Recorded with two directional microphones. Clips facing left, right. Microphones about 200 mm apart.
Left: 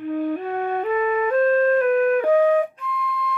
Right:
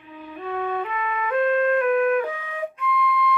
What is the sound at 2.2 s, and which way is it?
Flute, 60° left (ahead or behind).